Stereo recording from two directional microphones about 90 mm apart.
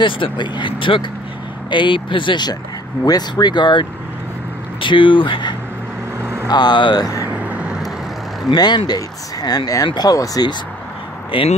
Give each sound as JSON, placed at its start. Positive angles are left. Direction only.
{"t": 0.0, "sound": "speech", "side_deg": 65}
{"t": 4.8, "sound": "speech", "side_deg": 65}
{"t": 6.4, "sound": "speech", "side_deg": 50}
{"t": 7.3, "sound": "vehicle", "side_deg": -15}
{"t": 8.5, "sound": "speech", "side_deg": 50}
{"t": 11.3, "sound": "speech", "side_deg": 70}